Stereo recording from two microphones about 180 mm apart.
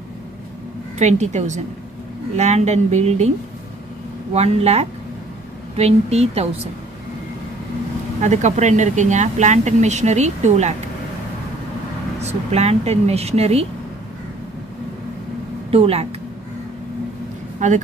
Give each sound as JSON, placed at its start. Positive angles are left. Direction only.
{"t": 0.9, "sound": "speech", "side_deg": -40}
{"t": 4.3, "sound": "speech", "side_deg": -35}
{"t": 8.2, "sound": "speech", "side_deg": -40}
{"t": 12.2, "sound": "speech", "side_deg": -35}
{"t": 15.7, "sound": "speech", "side_deg": -35}
{"t": 17.6, "sound": "a woman's voice", "side_deg": -45}